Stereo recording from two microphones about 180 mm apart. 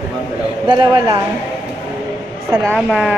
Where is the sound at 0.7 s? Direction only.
25° right (ahead or behind).